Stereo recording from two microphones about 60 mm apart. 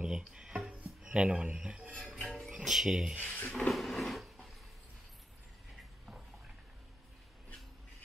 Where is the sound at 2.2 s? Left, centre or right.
Centre.